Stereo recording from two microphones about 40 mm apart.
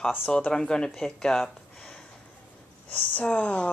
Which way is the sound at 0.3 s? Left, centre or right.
Left.